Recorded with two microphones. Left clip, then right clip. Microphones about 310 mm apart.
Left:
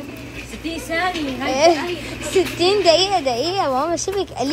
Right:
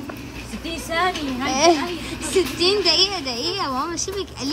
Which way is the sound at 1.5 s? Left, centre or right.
Centre.